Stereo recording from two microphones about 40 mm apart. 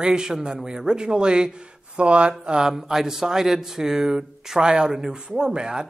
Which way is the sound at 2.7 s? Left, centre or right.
Centre.